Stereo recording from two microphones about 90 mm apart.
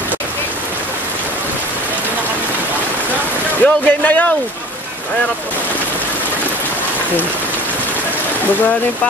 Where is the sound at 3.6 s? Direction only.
20° left (ahead or behind).